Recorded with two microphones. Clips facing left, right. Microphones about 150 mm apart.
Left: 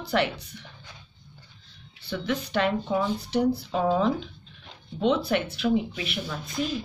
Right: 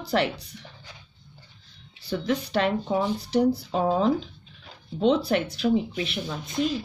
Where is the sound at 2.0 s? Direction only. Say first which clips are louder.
Right 3 dB; 35° right (ahead or behind).